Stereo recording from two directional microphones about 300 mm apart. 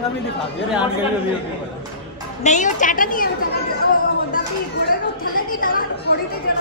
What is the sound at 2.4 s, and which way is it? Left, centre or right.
A woman's voice, left.